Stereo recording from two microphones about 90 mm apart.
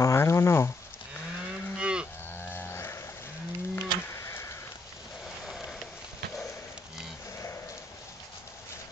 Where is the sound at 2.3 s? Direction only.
25° left (ahead or behind).